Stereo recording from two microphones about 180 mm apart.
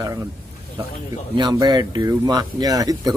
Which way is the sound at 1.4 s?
25° right (ahead or behind).